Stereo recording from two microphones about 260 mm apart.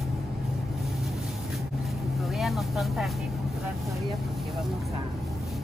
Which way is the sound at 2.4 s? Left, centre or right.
Centre.